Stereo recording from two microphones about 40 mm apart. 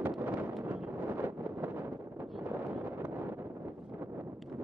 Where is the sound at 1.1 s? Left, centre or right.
Right.